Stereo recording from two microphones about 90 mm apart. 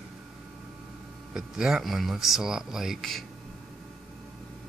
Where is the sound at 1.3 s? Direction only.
5° right (ahead or behind).